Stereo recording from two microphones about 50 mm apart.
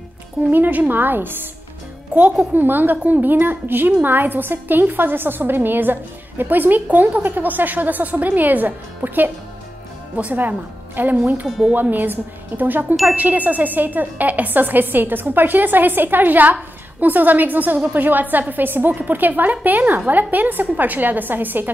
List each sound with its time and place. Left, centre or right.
0.5 s a woman's voice: right
11.4 s speech: centre
11.7 s a woman's voice: right